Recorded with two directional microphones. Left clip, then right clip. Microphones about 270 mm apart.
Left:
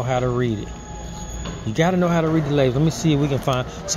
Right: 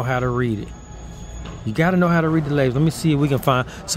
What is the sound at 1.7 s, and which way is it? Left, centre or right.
Speech, right.